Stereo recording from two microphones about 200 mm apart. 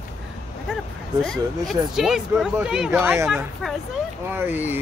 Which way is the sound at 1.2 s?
Centre (ahead or behind).